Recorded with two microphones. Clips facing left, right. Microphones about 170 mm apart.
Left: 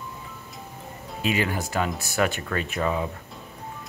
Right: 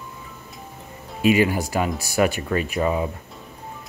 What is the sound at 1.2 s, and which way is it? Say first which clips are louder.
Speech: right 8 dB; 10° right (ahead or behind).